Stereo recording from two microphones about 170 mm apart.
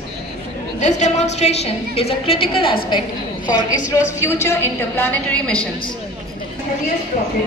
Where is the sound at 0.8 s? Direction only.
40° left (ahead or behind); by 3.5 s 25° left (ahead or behind).